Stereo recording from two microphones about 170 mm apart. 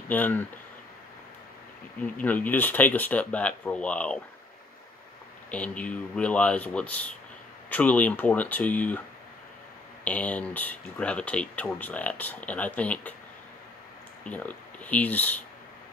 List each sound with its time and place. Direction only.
0.1 s speech: 10° left (ahead or behind)
2.1 s speech: 10° left (ahead or behind)
5.5 s speech: 10° left (ahead or behind)
10.0 s speech: 10° left (ahead or behind)
14.2 s speech: 10° left (ahead or behind)